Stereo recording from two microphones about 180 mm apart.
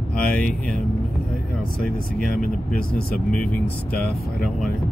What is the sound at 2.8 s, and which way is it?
Speech, 55° left (ahead or behind).